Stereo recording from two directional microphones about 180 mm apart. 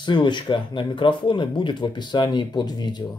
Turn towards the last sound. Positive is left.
turn(degrees=25)  # may be behind; listen again after turning